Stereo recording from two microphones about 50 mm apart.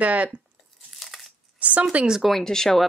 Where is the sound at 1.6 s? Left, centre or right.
Right.